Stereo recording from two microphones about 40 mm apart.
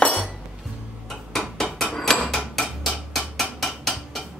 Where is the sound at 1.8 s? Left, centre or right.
Centre.